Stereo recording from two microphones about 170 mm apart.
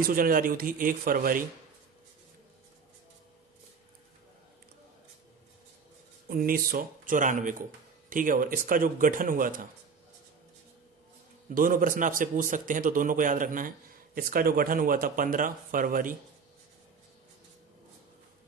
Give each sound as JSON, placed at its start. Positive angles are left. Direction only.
{"t": 0.0, "sound": "speech", "side_deg": -55}
{"t": 6.2, "sound": "speech", "side_deg": -55}
{"t": 11.4, "sound": "speech", "side_deg": -50}